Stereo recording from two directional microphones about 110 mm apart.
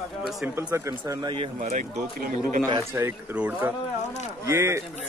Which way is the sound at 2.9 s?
15° right (ahead or behind).